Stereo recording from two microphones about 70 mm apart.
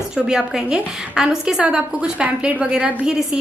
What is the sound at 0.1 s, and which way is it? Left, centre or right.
A woman's voice, centre.